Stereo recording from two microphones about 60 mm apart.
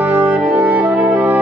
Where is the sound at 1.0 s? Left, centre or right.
Centre.